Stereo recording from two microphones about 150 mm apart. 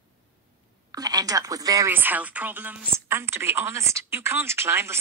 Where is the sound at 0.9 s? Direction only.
25° right (ahead or behind).